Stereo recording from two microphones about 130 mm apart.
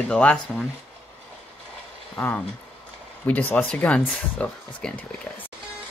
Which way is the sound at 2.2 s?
15° left (ahead or behind).